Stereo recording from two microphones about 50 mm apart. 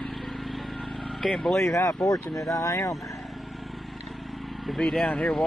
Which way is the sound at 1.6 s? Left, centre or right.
Left.